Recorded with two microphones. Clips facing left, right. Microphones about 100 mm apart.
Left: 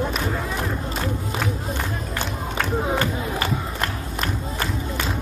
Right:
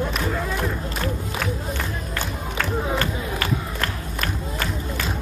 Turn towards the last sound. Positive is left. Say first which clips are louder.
# left 1 dB
turn(degrees=15)  # may be behind; listen again after turning